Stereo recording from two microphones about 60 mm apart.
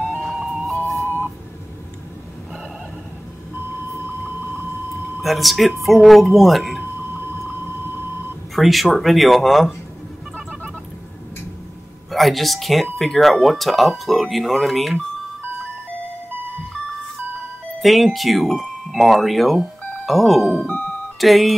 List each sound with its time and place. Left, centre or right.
0.2 s music: centre
4.3 s vehicle: right
5.2 s speech: centre
6.8 s a sound: right
7.8 s beep: right
8.5 s speech: centre
12.1 s speech: centre
17.7 s speech: centre
20.6 s music: left
21.2 s speech: centre